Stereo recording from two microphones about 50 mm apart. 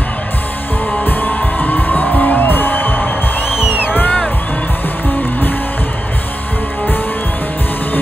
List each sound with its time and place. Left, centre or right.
1.0 s music: left